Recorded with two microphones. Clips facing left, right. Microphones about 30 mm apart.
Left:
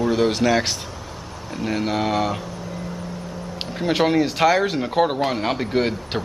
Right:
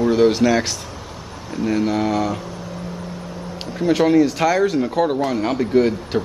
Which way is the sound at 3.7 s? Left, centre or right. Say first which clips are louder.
Right 4 dB; centre.